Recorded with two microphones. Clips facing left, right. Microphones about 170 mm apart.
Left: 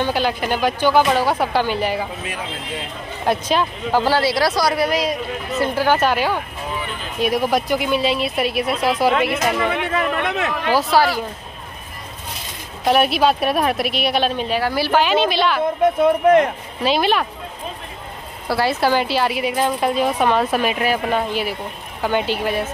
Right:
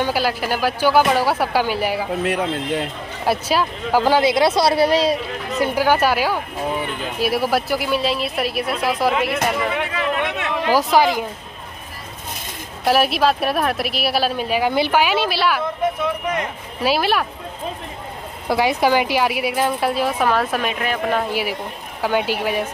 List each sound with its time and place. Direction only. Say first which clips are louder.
0.0 s a woman's voice: even; 5° right (ahead or behind)
2.2 s speech: right 8 dB; 70° right (ahead or behind)
3.3 s speech: even; 5° right (ahead or behind); by 5.2 s 30° right (ahead or behind)
5.6 s a woman's voice: right 1 dB; 10° right (ahead or behind)
10.7 s a woman's voice: right 1 dB; 15° right (ahead or behind)
12.8 s a woman's voice: left 1 dB; centre (ahead or behind)
16.0 s speech: left 9 dB; 55° left (ahead or behind)
16.8 s speech: left 1 dB; 5° right (ahead or behind)
18.5 s a woman's voice: right 1 dB; 15° right (ahead or behind); by 21.3 s 5° left (ahead or behind)
21.3 s a woman's voice: even; 10° right (ahead or behind)